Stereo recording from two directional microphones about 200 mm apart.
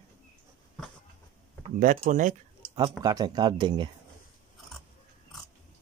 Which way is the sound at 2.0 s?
40° right (ahead or behind).